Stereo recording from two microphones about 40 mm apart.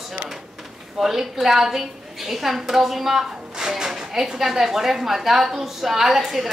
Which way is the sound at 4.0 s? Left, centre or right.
Centre.